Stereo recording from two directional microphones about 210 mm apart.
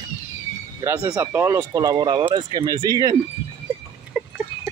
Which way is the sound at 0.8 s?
15° right (ahead or behind).